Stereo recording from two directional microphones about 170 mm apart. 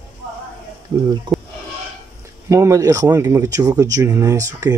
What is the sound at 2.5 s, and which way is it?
Speech, 20° right (ahead or behind).